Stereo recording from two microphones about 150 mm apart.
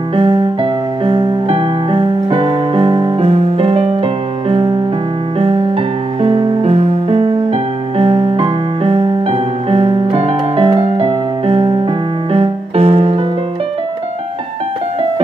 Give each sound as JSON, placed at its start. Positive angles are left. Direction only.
{"t": 0.1, "sound": "music", "side_deg": -35}
{"t": 3.2, "sound": "music", "side_deg": -40}
{"t": 6.2, "sound": "music", "side_deg": -40}